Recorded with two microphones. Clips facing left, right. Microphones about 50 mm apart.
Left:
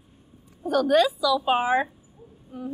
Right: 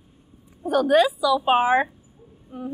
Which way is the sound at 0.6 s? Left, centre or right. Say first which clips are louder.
Right 2 dB; centre.